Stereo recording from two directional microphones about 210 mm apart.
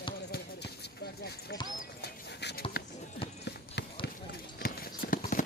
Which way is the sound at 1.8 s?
50° left (ahead or behind).